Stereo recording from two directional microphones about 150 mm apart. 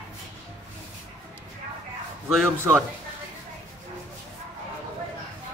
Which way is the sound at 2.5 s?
15° right (ahead or behind).